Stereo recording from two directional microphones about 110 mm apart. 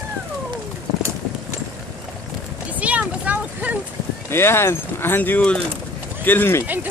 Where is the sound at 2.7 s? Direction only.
15° right (ahead or behind).